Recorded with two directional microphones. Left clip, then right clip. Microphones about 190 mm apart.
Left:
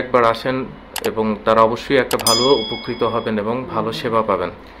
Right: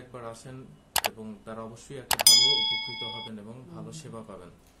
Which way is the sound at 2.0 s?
Centre (ahead or behind).